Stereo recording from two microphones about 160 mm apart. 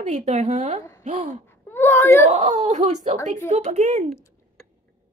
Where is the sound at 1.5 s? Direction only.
15° left (ahead or behind).